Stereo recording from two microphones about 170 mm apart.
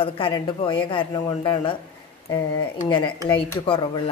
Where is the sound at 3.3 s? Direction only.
30° left (ahead or behind).